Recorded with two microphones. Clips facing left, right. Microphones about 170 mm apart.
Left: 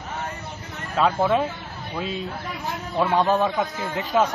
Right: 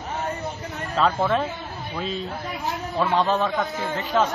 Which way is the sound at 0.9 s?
10° left (ahead or behind).